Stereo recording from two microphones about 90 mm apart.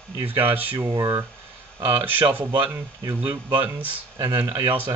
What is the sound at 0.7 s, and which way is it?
Speech, 40° right (ahead or behind).